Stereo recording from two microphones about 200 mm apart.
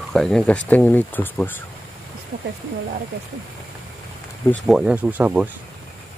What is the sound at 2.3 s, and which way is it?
Speech, 40° right (ahead or behind).